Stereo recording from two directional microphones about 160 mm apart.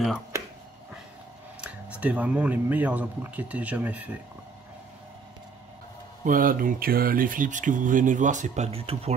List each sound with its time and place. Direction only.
1.6 s speech: 10° right (ahead or behind)
6.2 s speech: 60° right (ahead or behind); by 9.1 s 40° right (ahead or behind)